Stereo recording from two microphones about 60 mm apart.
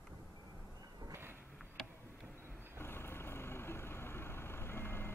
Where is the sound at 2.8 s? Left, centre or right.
Left.